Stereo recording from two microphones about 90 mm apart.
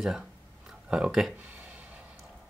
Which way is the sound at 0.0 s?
5° right (ahead or behind).